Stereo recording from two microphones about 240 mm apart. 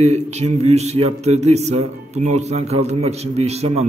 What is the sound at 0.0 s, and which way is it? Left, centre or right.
A man's voice, right.